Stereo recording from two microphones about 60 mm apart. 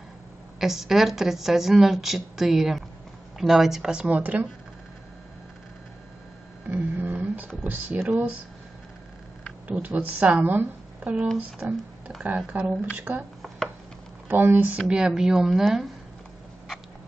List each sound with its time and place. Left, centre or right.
0.6 s speech: centre
4.1 s a woman's voice: right
6.7 s a sound: right
7.6 s speech: right
9.7 s a woman's voice: right
12.2 s a woman's voice: right
12.9 s speech: right
14.3 s speech: right
14.9 s speech: centre